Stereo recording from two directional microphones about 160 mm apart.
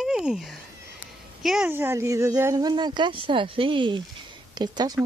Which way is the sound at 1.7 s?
10° right (ahead or behind).